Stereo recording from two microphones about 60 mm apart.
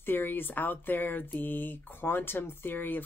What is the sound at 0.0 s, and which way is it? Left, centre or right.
Speech, left.